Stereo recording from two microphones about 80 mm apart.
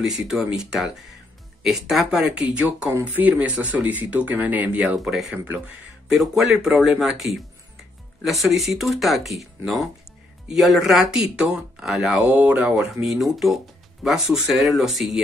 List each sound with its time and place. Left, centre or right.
0.0 s speech: centre
4.9 s speech: centre
12.3 s speech: centre